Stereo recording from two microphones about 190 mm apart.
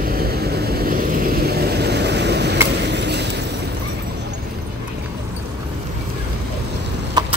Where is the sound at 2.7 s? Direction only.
65° right (ahead or behind).